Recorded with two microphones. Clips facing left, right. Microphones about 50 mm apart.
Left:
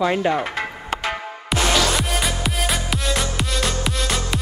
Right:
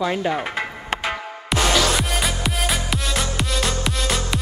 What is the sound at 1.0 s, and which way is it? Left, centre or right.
Music, centre.